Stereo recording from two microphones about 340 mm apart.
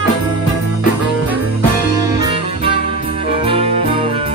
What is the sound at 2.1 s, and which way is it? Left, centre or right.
Music, centre.